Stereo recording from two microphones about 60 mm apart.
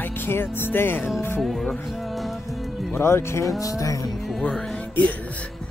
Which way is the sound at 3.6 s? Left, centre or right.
Left.